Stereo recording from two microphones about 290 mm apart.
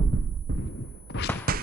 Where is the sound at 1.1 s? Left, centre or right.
Left.